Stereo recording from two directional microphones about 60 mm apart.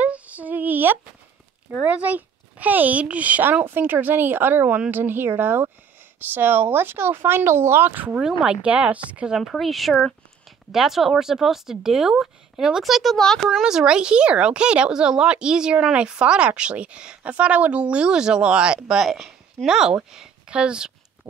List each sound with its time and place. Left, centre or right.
0.0 s female singing: right
1.8 s a child's voice: right
8.2 s speech: centre
8.6 s a child's voice: right
9.5 s speech: centre
13.6 s speech: centre
19.0 s a woman's voice: centre